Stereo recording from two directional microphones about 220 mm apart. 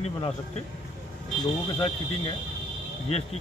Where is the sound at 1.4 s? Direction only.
25° left (ahead or behind).